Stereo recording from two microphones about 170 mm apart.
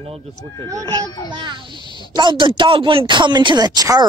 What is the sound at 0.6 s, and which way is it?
Speech, 20° right (ahead or behind).